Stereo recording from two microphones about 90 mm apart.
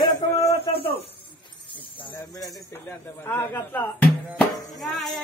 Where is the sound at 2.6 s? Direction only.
30° left (ahead or behind).